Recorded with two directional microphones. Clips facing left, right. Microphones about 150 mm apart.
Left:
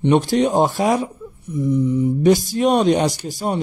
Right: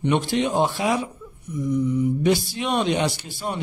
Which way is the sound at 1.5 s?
30° left (ahead or behind).